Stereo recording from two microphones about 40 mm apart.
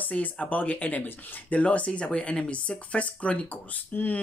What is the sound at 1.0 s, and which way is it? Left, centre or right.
Speech, left.